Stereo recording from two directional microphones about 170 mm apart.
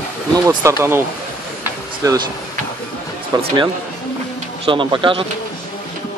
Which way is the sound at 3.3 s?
25° right (ahead or behind).